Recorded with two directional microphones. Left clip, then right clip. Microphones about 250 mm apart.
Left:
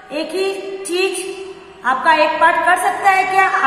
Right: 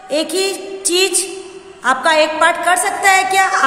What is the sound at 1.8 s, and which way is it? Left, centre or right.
A woman's voice, right.